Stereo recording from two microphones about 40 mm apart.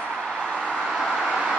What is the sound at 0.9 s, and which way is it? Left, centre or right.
Vehicle, centre.